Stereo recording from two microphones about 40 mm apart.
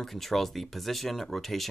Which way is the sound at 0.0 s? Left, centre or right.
Centre.